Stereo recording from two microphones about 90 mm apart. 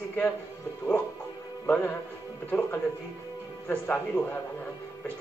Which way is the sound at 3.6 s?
25° left (ahead or behind).